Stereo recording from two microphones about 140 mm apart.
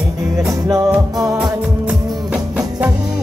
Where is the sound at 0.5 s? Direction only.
25° right (ahead or behind).